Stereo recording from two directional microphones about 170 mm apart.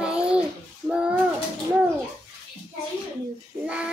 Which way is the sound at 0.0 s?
5° right (ahead or behind).